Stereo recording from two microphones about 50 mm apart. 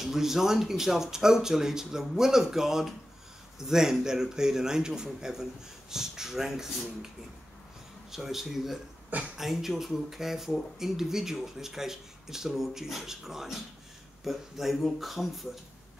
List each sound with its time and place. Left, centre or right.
0.0 s speech: centre
8.1 s speech: centre